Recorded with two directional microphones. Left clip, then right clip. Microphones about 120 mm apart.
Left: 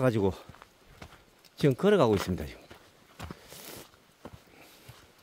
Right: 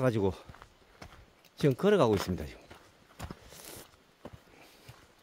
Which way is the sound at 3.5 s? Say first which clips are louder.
Left 3 dB; 35° left (ahead or behind).